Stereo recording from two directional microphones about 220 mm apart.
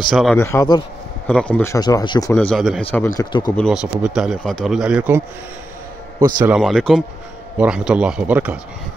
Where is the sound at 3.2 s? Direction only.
20° left (ahead or behind).